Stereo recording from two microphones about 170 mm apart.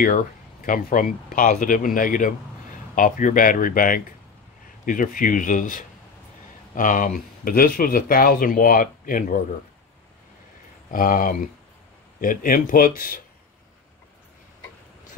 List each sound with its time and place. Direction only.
0.0 s speech: 50° left (ahead or behind)
10.9 s speech: 55° left (ahead or behind)